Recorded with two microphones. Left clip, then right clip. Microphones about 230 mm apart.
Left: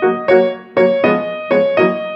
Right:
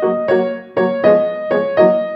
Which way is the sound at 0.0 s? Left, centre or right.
Left.